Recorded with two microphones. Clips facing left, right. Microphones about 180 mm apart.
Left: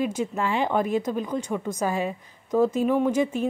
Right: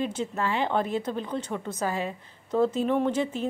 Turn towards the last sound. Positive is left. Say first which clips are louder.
# left 3 dB
turn(degrees=15)  # may be behind; listen again after turning